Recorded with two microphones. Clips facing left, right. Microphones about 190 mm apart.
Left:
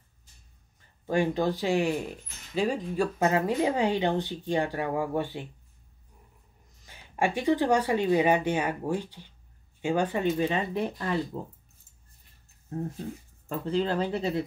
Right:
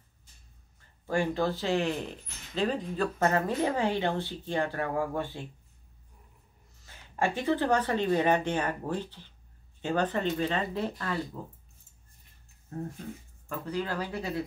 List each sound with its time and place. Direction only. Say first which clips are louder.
1.0 s speech: left 2 dB; 15° left (ahead or behind)
6.8 s speech: left 2 dB; 15° left (ahead or behind)
13.5 s speech: left 5 dB; 25° left (ahead or behind)